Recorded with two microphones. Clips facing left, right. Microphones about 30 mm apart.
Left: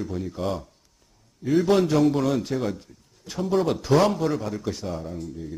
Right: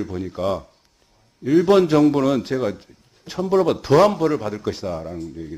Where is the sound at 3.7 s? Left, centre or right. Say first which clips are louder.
Right 5 dB; centre.